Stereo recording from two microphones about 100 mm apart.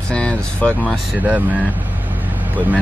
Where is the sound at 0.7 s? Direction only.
15° right (ahead or behind).